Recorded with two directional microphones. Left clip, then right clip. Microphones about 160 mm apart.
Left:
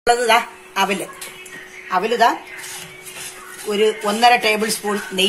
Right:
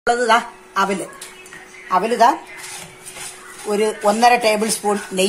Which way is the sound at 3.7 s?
60° right (ahead or behind).